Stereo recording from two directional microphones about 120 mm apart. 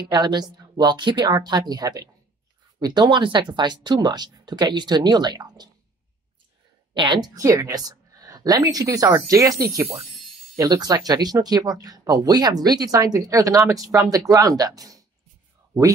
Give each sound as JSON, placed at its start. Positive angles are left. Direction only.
{"t": 0.1, "sound": "speech", "side_deg": -35}
{"t": 6.9, "sound": "a woman's voice", "side_deg": -40}
{"t": 7.3, "sound": "a woman's voice", "side_deg": -25}